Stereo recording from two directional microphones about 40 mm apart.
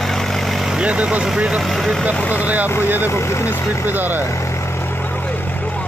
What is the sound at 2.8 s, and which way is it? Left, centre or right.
Speech, right.